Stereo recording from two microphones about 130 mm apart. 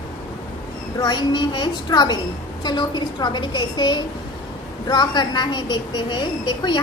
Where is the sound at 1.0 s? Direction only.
35° left (ahead or behind).